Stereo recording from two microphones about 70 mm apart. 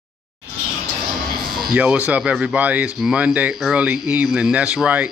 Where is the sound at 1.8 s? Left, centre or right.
Right.